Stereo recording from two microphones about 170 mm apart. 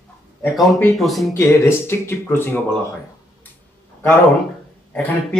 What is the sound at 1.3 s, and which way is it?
Speech, 15° left (ahead or behind).